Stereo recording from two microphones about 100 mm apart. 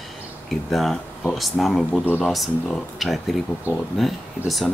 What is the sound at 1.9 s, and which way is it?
Speech, 15° left (ahead or behind).